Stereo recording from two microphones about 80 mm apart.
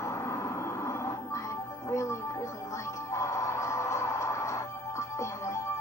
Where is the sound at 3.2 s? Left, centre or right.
Left.